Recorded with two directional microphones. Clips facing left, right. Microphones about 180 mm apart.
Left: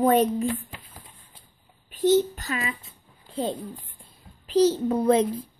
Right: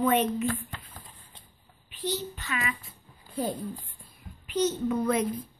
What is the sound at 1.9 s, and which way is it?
Speech, 50° left (ahead or behind).